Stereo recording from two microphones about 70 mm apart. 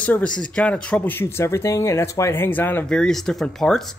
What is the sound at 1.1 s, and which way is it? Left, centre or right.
Speech, left.